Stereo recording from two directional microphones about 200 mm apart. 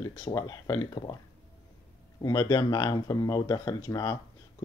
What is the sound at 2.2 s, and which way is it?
Speech, 20° left (ahead or behind).